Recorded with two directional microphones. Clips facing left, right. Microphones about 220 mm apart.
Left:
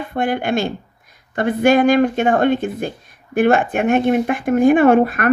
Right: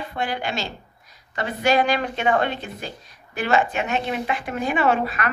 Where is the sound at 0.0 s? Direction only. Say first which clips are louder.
Left 7 dB; 50° left (ahead or behind).